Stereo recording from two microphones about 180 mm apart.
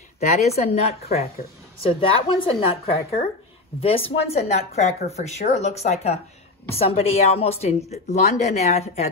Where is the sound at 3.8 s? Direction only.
30° left (ahead or behind).